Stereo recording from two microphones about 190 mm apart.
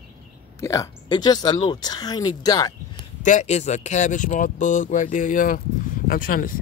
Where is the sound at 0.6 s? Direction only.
15° left (ahead or behind).